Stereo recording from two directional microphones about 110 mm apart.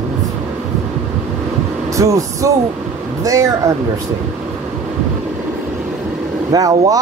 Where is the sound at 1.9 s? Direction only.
30° right (ahead or behind).